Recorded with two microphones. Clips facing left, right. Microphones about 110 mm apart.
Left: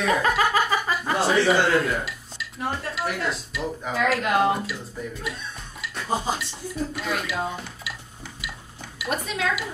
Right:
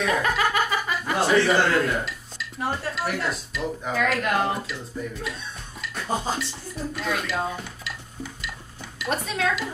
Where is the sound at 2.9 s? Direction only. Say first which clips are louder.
Even; centre (ahead or behind).